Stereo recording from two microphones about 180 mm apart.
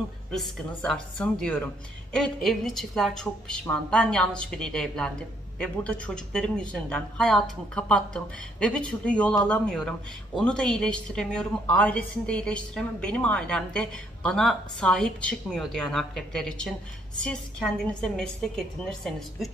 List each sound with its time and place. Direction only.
0.3 s a woman's voice: 5° left (ahead or behind)